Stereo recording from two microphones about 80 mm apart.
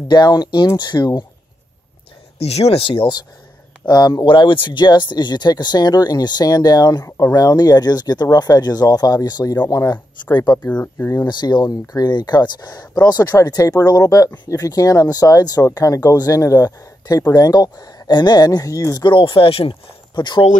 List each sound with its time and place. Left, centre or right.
0.1 s speech: left
2.9 s speech: left
3.8 s speech: left
11.0 s speech: left
11.2 s speech: left
12.1 s speech: left
19.0 s speech: left